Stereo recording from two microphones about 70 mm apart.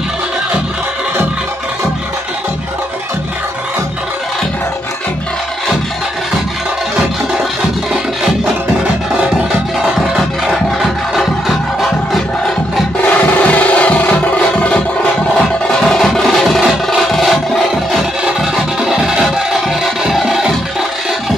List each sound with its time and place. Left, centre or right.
9.9 s music: centre
13.0 s music: left
15.9 s music: centre